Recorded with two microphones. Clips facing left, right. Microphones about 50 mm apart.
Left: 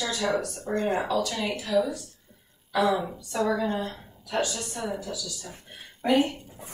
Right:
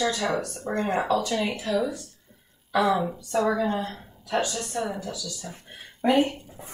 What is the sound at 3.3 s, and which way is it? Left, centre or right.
A woman's voice, centre.